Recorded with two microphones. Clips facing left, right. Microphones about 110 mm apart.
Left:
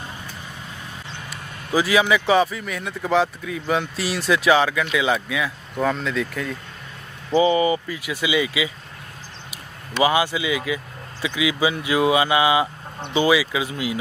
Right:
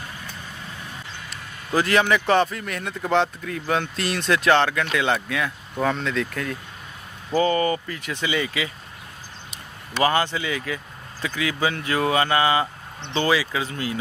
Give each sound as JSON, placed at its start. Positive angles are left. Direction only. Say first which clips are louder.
{"t": 1.3, "sound": "a man's voice", "louder": "left 1 dB", "side_deg": 5}
{"t": 7.2, "sound": "speech", "louder": "left 3 dB", "side_deg": 15}
{"t": 10.0, "sound": "speech", "louder": "left 2 dB", "side_deg": 10}